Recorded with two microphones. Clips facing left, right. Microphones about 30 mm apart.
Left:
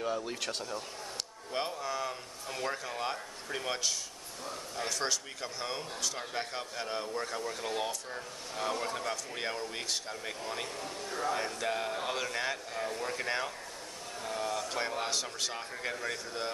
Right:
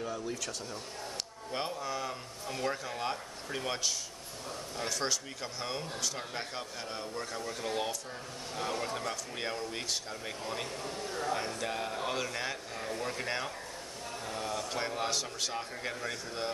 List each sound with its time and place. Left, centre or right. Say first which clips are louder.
0.0 s speech: left 2 dB; left
1.5 s speech: left 1 dB; centre